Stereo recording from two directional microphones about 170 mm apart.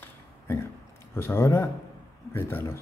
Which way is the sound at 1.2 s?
15° left (ahead or behind).